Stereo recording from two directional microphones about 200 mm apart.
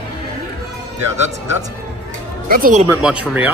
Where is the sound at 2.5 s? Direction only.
45° right (ahead or behind).